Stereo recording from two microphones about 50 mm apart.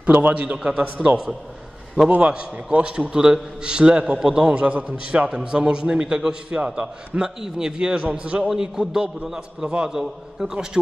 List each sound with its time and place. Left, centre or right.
0.0 s a man's voice: right
0.8 s a man's voice: right
2.1 s a man's voice: right
4.6 s a man's voice: right; by 10.8 s centre